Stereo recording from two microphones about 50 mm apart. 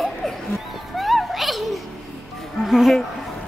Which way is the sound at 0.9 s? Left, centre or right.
Centre.